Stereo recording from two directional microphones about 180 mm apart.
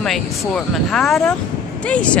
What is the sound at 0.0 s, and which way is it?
Speech, centre (ahead or behind).